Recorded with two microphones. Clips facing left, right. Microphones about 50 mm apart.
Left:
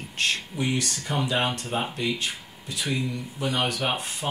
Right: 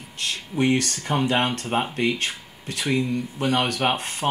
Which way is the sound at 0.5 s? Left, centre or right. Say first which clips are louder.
Right 6 dB; right.